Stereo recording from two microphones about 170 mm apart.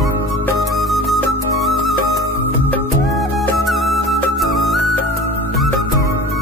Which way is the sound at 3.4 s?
Centre (ahead or behind).